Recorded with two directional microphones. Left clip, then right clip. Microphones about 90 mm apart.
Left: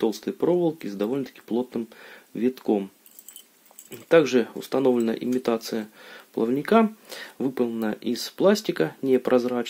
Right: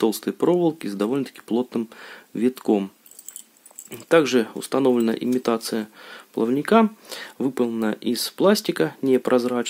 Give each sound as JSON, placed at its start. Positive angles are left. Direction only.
{"t": 0.0, "sound": "speech", "side_deg": -45}
{"t": 3.9, "sound": "speech", "side_deg": -30}